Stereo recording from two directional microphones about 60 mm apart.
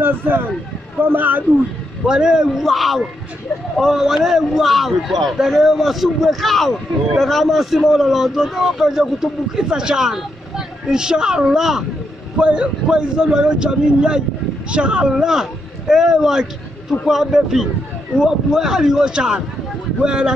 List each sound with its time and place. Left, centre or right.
0.0 s speech: right
2.0 s a man's voice: centre